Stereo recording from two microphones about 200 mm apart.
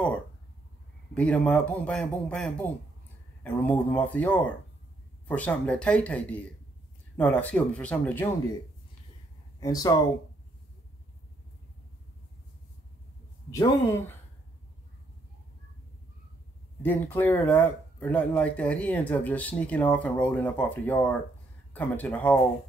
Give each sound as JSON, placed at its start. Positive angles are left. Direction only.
{"t": 1.1, "sound": "speech", "side_deg": 5}
{"t": 9.6, "sound": "speech", "side_deg": 20}
{"t": 13.5, "sound": "speech", "side_deg": 15}
{"t": 16.8, "sound": "speech", "side_deg": 10}